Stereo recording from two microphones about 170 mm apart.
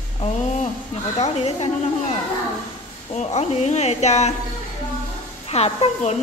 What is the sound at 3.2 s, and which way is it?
A woman's voice, 45° left (ahead or behind).